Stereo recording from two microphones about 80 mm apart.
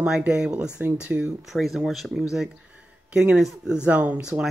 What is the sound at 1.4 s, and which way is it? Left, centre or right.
Speech, centre.